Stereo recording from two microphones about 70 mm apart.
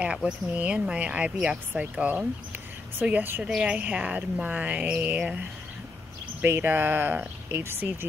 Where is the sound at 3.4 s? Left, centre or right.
Centre.